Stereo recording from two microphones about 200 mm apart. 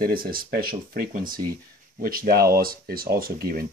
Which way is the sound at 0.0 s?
45° right (ahead or behind).